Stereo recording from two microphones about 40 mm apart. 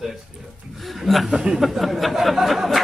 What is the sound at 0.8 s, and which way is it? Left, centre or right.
Chuckle, centre.